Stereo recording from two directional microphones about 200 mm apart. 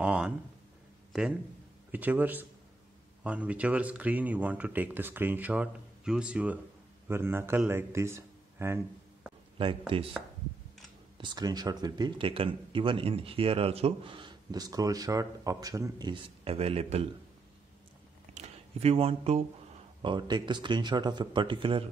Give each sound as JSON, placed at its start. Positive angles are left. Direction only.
{"t": 0.0, "sound": "a sound", "side_deg": -5}
{"t": 1.9, "sound": "a man's voice", "side_deg": -10}
{"t": 9.6, "sound": "speech", "side_deg": -25}
{"t": 11.1, "sound": "speech", "side_deg": -20}
{"t": 18.3, "sound": "a sound", "side_deg": -35}
{"t": 20.0, "sound": "speech", "side_deg": -20}